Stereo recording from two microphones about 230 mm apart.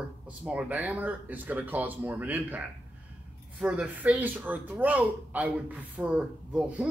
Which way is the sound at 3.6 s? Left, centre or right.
Centre.